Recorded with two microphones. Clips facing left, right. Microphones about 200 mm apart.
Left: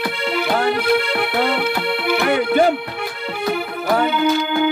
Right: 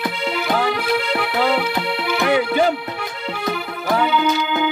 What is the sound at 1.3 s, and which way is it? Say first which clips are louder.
Music: right 1 dB; 55° left (ahead or behind).